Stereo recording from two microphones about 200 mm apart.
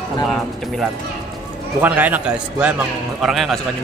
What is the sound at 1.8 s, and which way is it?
A man's voice, 10° right (ahead or behind).